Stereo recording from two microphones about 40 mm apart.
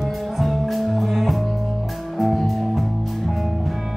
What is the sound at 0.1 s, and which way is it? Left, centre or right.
Music, centre.